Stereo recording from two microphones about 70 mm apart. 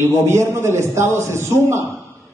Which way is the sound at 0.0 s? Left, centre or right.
Right.